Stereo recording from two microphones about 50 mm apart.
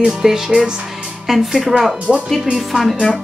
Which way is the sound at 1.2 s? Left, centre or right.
Centre.